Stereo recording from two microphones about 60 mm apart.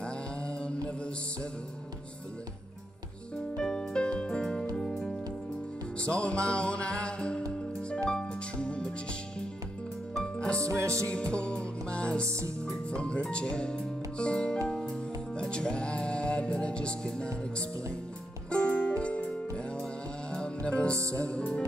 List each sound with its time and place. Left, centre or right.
0.0 s mantra: centre
3.5 s music: centre
5.9 s music: centre
10.2 s music: centre
10.6 s music: right
11.3 s music: centre
12.3 s speech: right
12.9 s speech: centre
14.7 s music: centre
21.0 s speech: right
21.3 s speech: centre